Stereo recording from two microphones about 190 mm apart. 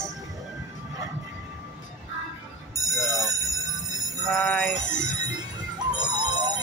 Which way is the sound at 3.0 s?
20° right (ahead or behind).